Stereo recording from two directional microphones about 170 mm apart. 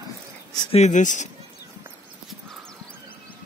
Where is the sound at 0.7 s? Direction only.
45° left (ahead or behind).